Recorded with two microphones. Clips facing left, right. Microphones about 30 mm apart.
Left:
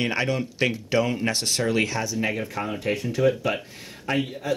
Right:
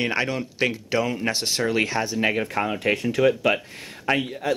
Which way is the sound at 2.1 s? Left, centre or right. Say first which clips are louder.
Right 5 dB; right.